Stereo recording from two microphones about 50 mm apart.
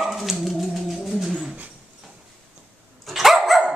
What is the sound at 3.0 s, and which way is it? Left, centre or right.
Dog, centre.